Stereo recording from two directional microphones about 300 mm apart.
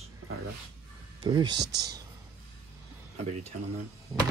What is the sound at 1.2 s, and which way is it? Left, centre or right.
Speech, centre.